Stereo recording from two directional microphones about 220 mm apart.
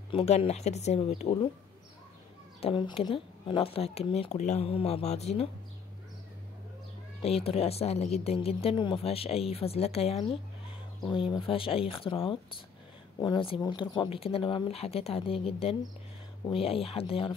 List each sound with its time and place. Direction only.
0.1 s a woman's voice: 25° left (ahead or behind)
2.6 s a woman's voice: 25° left (ahead or behind)
7.2 s a woman's voice: 25° left (ahead or behind)